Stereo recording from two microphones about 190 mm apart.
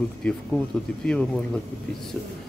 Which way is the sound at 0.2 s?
5° left (ahead or behind).